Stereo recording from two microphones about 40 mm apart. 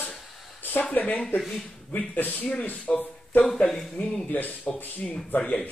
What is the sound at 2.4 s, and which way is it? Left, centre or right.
Speech, left.